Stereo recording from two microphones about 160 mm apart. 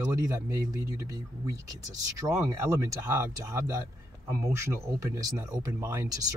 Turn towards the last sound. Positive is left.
turn(degrees=-25)  # may be behind; listen again after turning